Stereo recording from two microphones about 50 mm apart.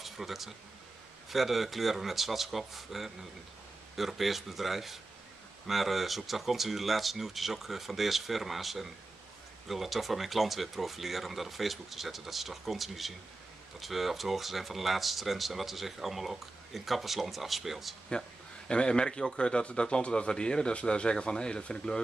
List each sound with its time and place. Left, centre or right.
0.0 s a sound: centre
1.3 s speech: centre
18.7 s speech: centre